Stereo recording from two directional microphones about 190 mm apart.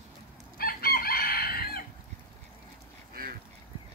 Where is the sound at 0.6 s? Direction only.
50° left (ahead or behind).